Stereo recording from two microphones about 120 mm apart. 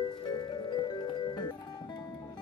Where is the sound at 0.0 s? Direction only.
40° left (ahead or behind).